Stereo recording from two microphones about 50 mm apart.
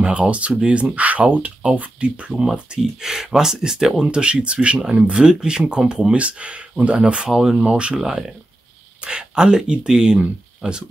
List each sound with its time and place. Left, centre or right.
0.0 s speech: right
3.0 s speech: centre
7.6 s speech: right